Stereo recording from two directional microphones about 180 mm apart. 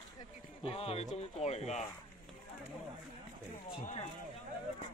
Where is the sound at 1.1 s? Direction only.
35° left (ahead or behind).